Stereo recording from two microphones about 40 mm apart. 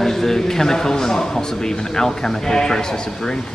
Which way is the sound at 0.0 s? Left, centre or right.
Centre.